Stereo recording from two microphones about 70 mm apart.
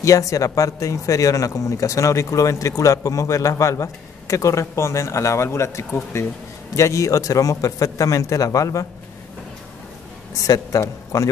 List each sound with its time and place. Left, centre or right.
0.0 s speech: left
10.4 s a man's voice: left